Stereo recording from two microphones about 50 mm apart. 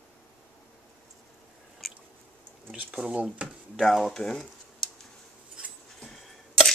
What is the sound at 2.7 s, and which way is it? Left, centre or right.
Speech, centre.